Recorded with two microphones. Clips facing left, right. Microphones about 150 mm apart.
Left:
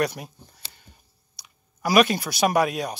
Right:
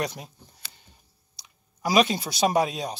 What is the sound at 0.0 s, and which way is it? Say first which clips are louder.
Speech: left 5 dB; 20° right (ahead or behind).